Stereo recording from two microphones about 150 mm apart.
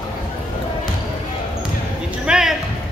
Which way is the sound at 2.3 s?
5° right (ahead or behind).